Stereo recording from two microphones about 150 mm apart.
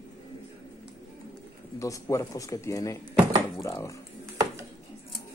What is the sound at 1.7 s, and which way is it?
Speech, 20° left (ahead or behind).